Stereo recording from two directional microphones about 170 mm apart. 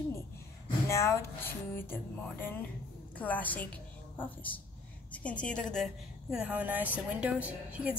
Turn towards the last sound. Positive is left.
turn(degrees=-10)  # may be behind; listen again after turning